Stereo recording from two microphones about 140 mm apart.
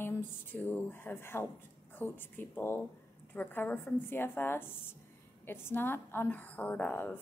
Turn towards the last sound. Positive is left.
turn(degrees=15)  # may be behind; listen again after turning